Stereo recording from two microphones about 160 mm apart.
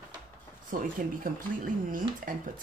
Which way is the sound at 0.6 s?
60° right (ahead or behind).